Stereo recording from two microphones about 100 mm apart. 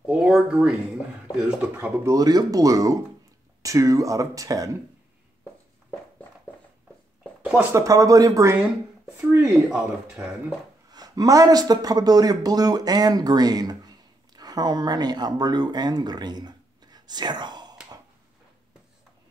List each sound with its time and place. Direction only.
0.0 s speech: 10° right (ahead or behind)
2.0 s speech: 40° right (ahead or behind)
7.7 s speech: 35° right (ahead or behind)
9.4 s speech: 10° right (ahead or behind)
10.9 s speech: 40° right (ahead or behind)